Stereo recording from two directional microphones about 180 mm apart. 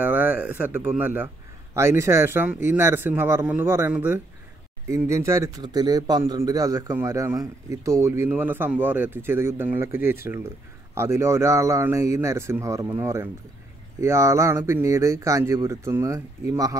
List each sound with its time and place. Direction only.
0.0 s speech: 10° right (ahead or behind)